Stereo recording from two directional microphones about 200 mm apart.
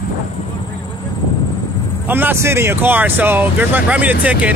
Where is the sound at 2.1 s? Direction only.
10° right (ahead or behind).